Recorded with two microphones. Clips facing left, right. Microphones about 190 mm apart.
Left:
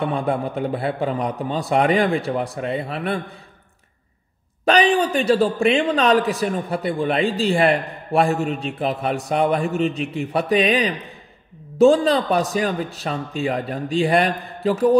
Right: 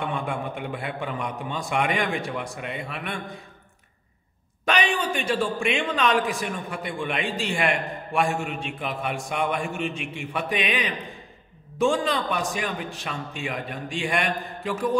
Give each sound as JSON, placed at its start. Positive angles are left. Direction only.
{"t": 0.0, "sound": "a man's voice", "side_deg": 35}
{"t": 4.6, "sound": "a man's voice", "side_deg": 35}